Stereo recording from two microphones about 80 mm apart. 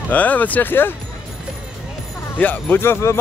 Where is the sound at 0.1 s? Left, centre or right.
Centre.